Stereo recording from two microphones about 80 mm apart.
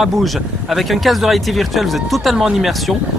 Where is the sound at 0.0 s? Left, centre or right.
Centre.